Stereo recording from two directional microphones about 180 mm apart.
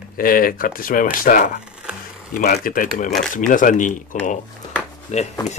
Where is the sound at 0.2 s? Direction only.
50° left (ahead or behind).